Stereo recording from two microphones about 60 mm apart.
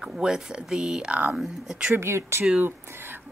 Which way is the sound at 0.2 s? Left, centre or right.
Centre.